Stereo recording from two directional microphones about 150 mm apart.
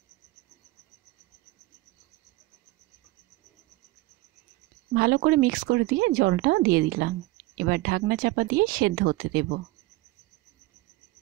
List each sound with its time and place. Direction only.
4.9 s speech: 90° right